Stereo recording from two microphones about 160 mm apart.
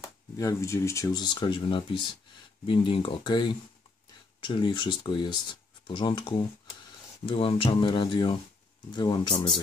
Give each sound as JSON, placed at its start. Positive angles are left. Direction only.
{"t": 0.0, "sound": "speech", "side_deg": 20}